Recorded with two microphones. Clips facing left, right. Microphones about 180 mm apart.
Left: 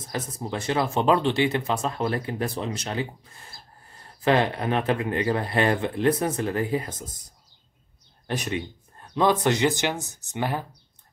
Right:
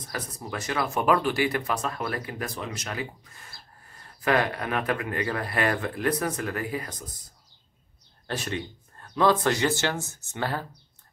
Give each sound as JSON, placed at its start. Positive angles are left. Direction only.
{"t": 0.0, "sound": "speech", "side_deg": 25}